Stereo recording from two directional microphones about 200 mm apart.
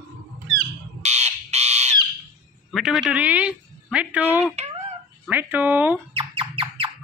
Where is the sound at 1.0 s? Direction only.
35° right (ahead or behind).